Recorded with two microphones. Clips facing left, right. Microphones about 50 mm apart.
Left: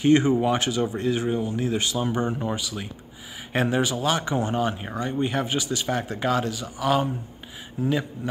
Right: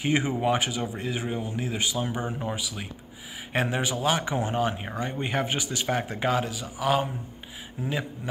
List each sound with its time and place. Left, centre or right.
0.0 s speech: centre
5.2 s speech: right; by 8.1 s centre